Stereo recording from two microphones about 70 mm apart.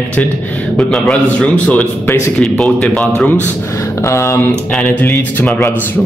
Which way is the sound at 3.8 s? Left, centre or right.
Left.